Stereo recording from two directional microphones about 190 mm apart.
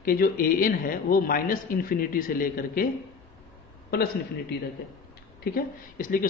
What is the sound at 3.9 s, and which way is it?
A man's voice, 55° left (ahead or behind).